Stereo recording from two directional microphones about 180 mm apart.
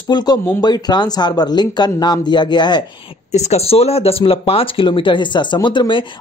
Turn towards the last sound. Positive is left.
turn(degrees=25)  # may be behind; listen again after turning